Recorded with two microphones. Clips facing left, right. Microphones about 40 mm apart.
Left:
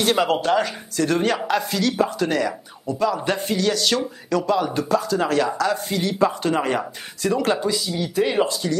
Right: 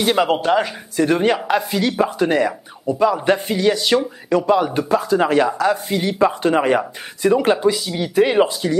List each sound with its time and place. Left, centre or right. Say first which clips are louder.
0.0 s speech: right 3 dB; centre